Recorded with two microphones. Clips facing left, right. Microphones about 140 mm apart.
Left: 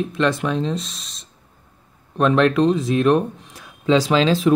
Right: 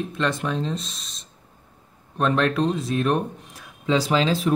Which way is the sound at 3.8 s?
90° left.